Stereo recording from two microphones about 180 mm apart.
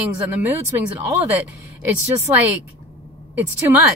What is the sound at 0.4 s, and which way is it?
Speech, 10° right (ahead or behind).